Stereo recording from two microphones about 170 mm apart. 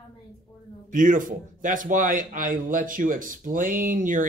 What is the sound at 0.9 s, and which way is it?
Speech, 50° right (ahead or behind).